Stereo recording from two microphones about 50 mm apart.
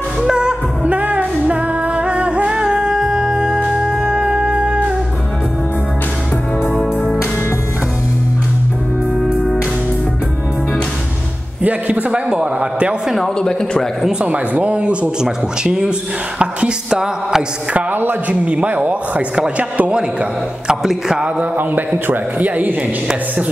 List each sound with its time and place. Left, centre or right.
0.2 s music: centre
6.7 s music: centre
9.2 s music: centre
12.1 s speech: centre
13.4 s a man's voice: centre
14.2 s speech: right
16.3 s music: centre
17.7 s a man's voice: right
18.3 s speech: right
20.6 s speech: centre
21.5 s a man's voice: right